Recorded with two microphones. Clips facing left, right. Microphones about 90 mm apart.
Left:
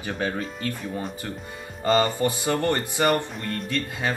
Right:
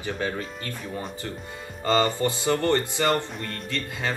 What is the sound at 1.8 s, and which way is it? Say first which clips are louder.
Speech: left 1 dB; 20° left (ahead or behind).